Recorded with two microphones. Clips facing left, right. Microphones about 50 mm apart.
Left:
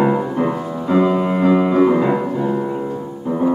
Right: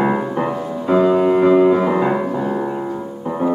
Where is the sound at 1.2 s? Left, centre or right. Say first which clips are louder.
Right 3 dB; centre.